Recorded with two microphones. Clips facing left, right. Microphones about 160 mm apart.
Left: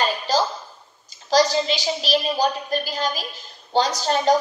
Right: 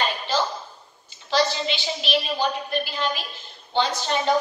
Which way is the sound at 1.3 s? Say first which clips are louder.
Left 4 dB; 40° left (ahead or behind).